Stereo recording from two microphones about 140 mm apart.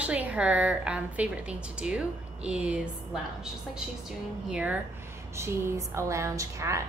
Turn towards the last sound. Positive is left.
turn(degrees=-20)  # may be behind; listen again after turning